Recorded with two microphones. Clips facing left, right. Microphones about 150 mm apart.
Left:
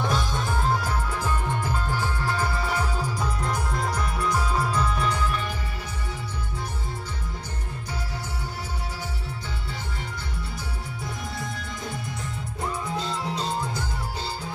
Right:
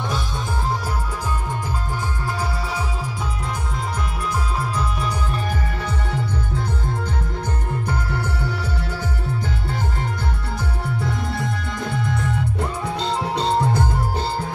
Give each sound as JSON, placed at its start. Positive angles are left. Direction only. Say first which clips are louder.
{"t": 12.9, "sound": "music", "louder": "right 6 dB", "side_deg": -70}